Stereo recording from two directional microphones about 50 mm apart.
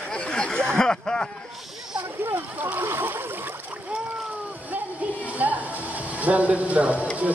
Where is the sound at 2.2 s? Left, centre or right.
Right.